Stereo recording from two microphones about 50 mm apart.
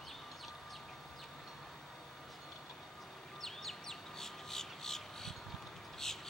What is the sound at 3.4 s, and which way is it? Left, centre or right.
Bird, centre.